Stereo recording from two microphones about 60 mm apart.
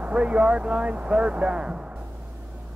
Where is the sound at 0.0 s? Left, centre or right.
Right.